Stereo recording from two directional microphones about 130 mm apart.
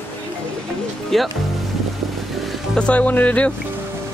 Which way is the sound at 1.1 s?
Centre (ahead or behind).